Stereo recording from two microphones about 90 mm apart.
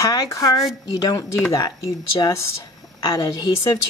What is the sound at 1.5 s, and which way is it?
A woman's voice, 45° left (ahead or behind).